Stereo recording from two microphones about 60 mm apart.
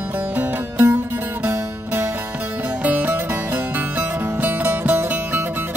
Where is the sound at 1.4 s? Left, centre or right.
Right.